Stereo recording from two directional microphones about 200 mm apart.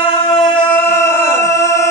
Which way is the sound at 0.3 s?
10° left (ahead or behind).